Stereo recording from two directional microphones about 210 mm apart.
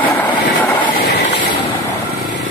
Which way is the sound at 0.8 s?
45° left (ahead or behind).